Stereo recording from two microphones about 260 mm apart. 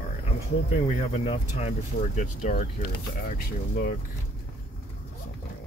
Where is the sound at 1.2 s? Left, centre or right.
Left.